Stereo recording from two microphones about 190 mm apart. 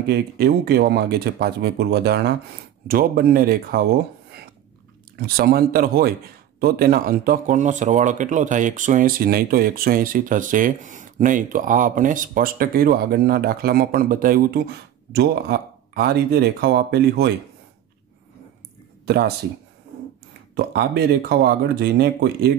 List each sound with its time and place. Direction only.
0.0 s speech: 60° right (ahead or behind)
5.2 s speech: 50° right (ahead or behind)
19.0 s speech: 55° right (ahead or behind)
20.5 s speech: 55° right (ahead or behind)